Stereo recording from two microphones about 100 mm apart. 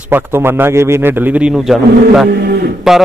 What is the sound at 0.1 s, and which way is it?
A man's voice, 25° right (ahead or behind).